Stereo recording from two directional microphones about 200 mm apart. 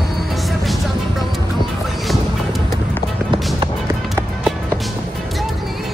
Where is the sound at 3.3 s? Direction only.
25° right (ahead or behind).